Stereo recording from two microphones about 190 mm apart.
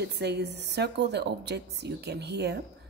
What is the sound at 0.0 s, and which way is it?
A woman's voice, 60° right (ahead or behind).